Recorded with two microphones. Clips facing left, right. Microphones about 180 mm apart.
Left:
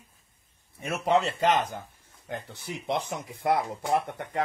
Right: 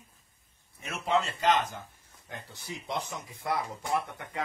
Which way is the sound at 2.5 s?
60° left (ahead or behind).